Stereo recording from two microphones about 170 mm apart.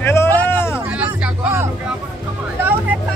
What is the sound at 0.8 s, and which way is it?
Music, 10° right (ahead or behind).